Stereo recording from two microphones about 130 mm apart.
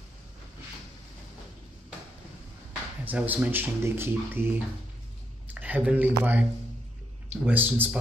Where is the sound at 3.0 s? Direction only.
15° right (ahead or behind).